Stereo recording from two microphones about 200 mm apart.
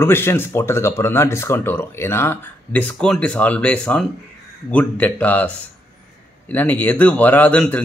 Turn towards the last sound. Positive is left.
turn(degrees=10)  # may be behind; listen again after turning